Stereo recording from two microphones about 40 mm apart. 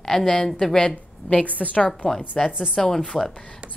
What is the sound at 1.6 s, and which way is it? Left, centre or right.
A woman's voice, centre.